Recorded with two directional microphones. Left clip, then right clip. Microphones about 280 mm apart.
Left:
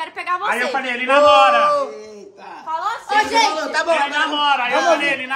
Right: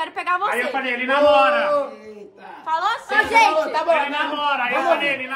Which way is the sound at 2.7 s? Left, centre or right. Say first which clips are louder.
Right 1 dB; right.